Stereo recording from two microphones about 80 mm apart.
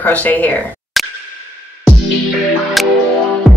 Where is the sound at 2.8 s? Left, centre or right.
Centre.